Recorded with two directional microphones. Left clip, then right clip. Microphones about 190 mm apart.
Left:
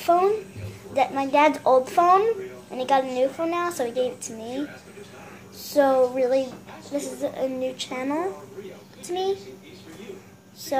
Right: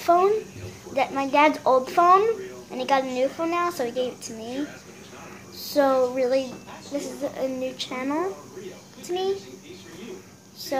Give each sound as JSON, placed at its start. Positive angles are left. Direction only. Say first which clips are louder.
{"t": 0.0, "sound": "a child's voice", "louder": "right 1 dB", "side_deg": 0}
{"t": 5.7, "sound": "a woman's voice", "louder": "left 1 dB", "side_deg": 0}
{"t": 10.7, "sound": "a woman's voice", "louder": "left 2 dB", "side_deg": 5}